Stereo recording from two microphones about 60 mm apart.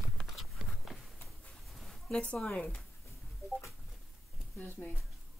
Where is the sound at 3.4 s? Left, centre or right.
Left.